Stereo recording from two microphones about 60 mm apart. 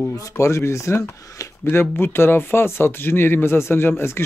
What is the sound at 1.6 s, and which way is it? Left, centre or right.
Speech, left.